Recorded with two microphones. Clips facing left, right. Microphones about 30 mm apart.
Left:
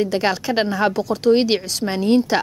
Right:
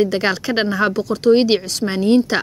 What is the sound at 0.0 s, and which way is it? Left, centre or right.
A woman's voice, centre.